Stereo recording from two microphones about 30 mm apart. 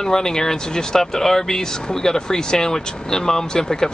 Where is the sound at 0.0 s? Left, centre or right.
Left.